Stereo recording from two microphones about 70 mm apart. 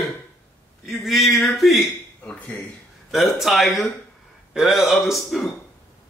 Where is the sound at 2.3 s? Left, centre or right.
Left.